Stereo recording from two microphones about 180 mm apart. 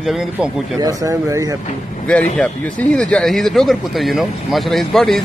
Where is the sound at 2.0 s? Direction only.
5° left (ahead or behind).